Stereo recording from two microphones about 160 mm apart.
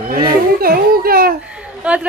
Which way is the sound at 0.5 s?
70° right (ahead or behind).